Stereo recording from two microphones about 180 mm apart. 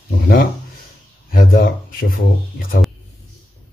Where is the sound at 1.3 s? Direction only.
55° left (ahead or behind).